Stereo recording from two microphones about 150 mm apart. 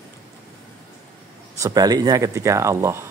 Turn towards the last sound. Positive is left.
turn(degrees=-20)  # may be behind; listen again after turning